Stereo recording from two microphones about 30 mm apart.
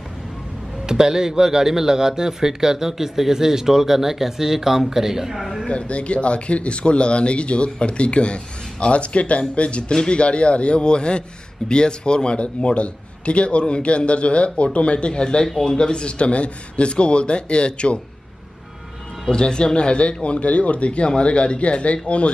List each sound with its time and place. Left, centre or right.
0.8 s speech: right
5.7 s speech: left
15.6 s speech: left
19.3 s speech: left